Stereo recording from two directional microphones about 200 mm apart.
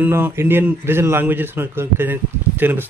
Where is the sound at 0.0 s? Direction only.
10° right (ahead or behind).